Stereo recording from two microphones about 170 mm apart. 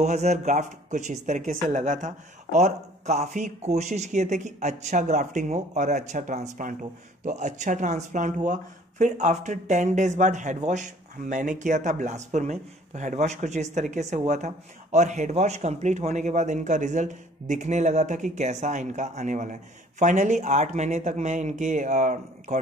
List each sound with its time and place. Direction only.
0.0 s speech: 40° right (ahead or behind)